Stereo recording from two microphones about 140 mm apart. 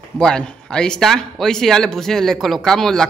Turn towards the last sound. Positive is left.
turn(degrees=5)  # may be behind; listen again after turning